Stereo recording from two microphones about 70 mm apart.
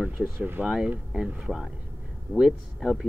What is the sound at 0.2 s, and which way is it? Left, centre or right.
Speech, right.